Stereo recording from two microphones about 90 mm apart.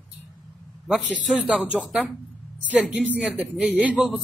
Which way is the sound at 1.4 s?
15° right (ahead or behind).